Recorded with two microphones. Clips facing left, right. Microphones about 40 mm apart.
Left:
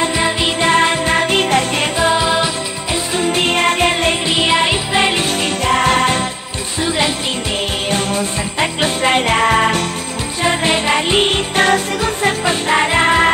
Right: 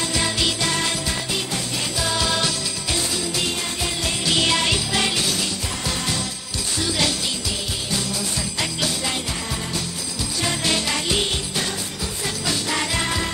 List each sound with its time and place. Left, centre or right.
0.0 s music: left
2.1 s music: left
3.2 s music: left
4.3 s music: left
5.7 s music: left
7.9 s jingle bell: left
9.3 s music: left
10.4 s music: left